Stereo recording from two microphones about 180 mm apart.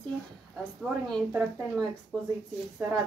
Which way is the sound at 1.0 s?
5° left (ahead or behind).